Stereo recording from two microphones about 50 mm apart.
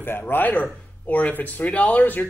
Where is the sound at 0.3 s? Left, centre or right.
Left.